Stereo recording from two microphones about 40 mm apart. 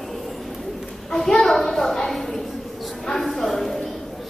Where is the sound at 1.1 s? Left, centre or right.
Centre.